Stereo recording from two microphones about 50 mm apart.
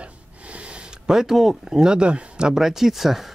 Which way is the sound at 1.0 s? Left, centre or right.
Centre.